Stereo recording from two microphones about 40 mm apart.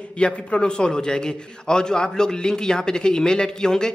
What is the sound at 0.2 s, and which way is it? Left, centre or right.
A man's voice, left.